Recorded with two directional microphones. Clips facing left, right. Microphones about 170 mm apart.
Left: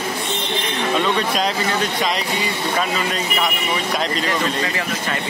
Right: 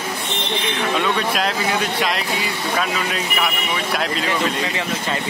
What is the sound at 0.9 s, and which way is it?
A man's voice, 5° right (ahead or behind).